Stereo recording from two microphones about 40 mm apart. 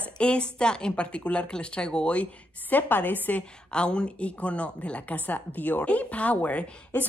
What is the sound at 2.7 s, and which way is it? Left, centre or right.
Speech, left.